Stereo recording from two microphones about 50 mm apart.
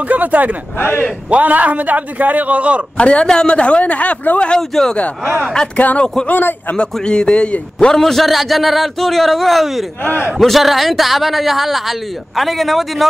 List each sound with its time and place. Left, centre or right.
0.0 s a man's voice: right
0.7 s speech: left
1.3 s a man's voice: right
3.0 s a man's voice: left
4.6 s speech: centre
5.8 s a man's voice: left
6.8 s a man's voice: centre
7.8 s a man's voice: centre